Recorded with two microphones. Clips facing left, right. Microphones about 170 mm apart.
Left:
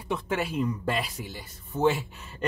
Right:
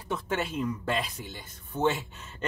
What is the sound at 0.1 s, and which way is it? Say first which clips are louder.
Speech: left 2 dB; 5° left (ahead or behind).